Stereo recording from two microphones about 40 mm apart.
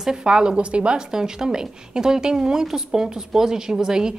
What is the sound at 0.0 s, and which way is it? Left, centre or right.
A woman's voice, centre.